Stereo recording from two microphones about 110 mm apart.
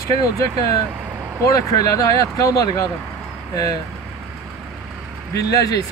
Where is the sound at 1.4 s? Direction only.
30° left (ahead or behind).